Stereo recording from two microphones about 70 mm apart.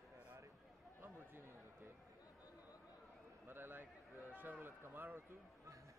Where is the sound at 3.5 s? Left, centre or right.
Right.